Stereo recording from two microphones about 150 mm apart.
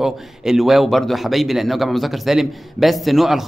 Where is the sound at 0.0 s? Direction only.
Centre (ahead or behind).